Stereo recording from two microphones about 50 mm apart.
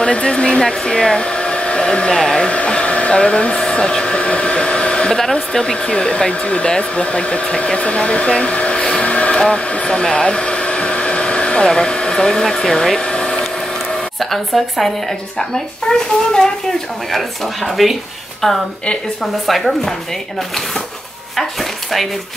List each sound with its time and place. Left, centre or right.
0.0 s hair dryer: left
5.1 s speech: centre
13.0 s a sound: centre
14.2 s a child's voice: centre
17.1 s a child's voice: centre